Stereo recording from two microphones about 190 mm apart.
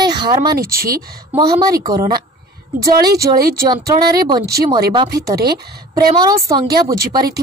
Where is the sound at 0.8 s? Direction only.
20° right (ahead or behind).